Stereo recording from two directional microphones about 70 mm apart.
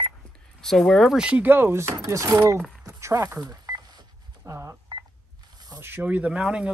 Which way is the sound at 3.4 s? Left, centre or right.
Right.